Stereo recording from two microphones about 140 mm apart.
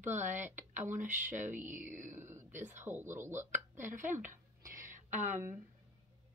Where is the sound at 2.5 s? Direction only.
60° right (ahead or behind).